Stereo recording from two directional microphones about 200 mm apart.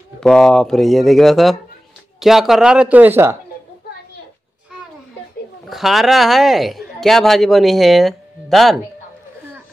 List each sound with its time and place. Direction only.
0.2 s speech: centre (ahead or behind)
5.7 s speech: centre (ahead or behind)